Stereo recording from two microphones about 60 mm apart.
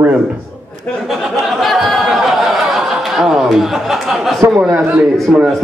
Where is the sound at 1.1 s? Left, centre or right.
Centre.